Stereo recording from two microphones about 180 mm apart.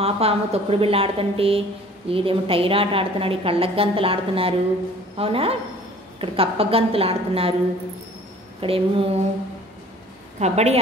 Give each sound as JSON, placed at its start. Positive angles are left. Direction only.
{"t": 0.0, "sound": "a woman's voice", "side_deg": -35}
{"t": 8.5, "sound": "a woman's voice", "side_deg": -30}
{"t": 10.4, "sound": "a woman's voice", "side_deg": -35}